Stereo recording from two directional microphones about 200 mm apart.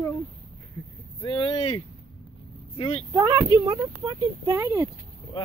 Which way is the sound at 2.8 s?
30° left (ahead or behind).